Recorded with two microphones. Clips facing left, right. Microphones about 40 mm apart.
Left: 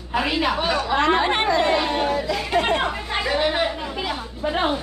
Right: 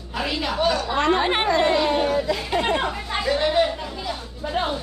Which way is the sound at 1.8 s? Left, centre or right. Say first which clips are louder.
Right 2 dB; centre.